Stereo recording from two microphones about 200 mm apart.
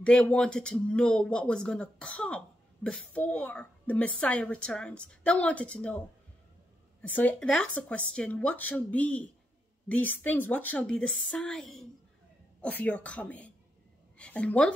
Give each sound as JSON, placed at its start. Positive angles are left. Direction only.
{"t": 0.0, "sound": "a woman's voice", "side_deg": 5}